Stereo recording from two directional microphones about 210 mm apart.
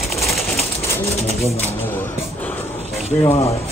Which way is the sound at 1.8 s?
10° left (ahead or behind).